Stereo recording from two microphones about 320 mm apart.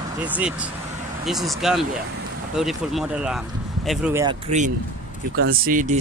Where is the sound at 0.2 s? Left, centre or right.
Centre.